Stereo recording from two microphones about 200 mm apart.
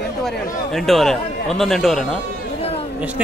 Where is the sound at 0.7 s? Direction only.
Centre (ahead or behind).